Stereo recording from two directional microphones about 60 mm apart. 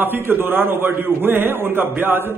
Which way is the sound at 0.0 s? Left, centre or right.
Right.